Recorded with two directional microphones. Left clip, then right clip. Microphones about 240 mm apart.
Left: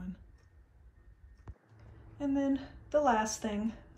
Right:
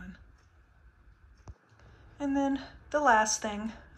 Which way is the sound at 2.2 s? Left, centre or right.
Centre.